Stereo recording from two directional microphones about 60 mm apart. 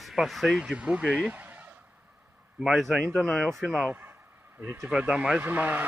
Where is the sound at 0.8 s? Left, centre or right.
Right.